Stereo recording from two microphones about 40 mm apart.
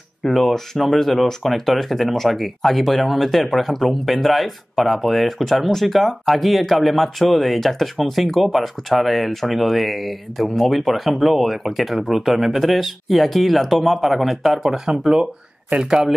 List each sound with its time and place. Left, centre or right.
0.2 s speech: centre
14.7 s speech: centre